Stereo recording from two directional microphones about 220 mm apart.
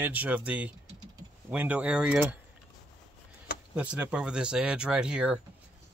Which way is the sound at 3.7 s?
5° right (ahead or behind).